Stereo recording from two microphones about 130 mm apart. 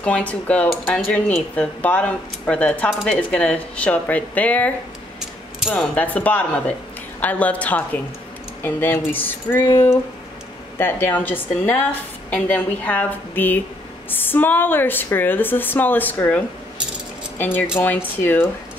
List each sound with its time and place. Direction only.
0.0 s cutlery: 10° left (ahead or behind)